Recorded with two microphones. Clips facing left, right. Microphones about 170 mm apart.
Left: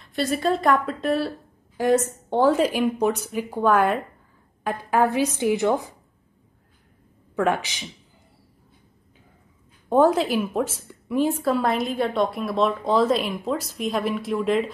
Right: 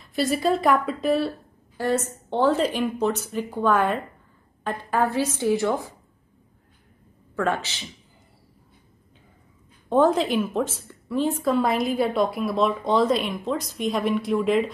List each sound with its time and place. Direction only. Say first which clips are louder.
0.0 s a woman's voice: right 1 dB; centre (ahead or behind)
1.8 s a woman's voice: left 4 dB; 15° left (ahead or behind)
7.3 s a woman's voice: left 2 dB; 15° left (ahead or behind)
9.8 s a woman's voice: left 1 dB; 10° left (ahead or behind)